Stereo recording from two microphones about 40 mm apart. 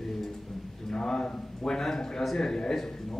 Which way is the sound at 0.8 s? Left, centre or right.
Centre.